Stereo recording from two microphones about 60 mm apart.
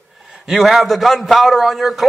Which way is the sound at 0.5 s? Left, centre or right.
Centre.